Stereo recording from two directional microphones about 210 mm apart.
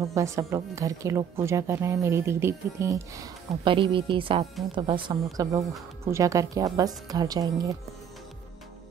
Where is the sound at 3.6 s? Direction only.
25° right (ahead or behind).